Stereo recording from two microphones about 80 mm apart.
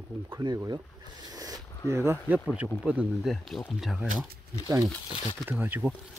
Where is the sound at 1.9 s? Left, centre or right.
Right.